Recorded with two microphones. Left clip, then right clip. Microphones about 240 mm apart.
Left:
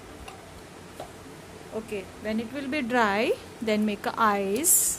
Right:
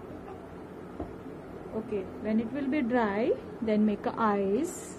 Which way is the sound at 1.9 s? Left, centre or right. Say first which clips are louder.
Right 1 dB; left.